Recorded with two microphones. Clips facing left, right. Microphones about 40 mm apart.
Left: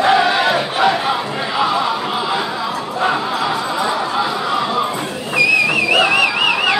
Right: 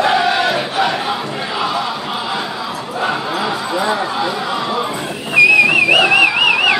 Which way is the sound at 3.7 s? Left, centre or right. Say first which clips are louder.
Right 1 dB; centre.